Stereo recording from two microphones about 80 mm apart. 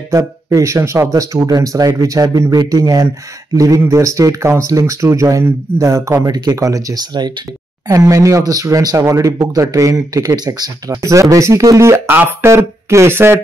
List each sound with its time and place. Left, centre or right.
0.5 s speech: right
6.1 s speech: right
7.9 s speech: right
11.0 s speech: right
12.1 s speech: right